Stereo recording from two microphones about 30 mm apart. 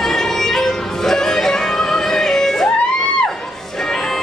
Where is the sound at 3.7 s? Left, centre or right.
Centre.